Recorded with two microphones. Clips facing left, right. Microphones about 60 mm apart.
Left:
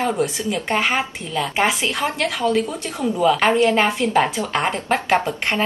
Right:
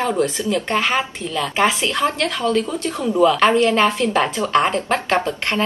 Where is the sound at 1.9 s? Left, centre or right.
Centre.